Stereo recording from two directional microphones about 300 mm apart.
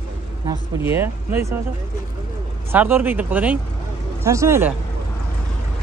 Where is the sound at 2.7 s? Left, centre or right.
Centre.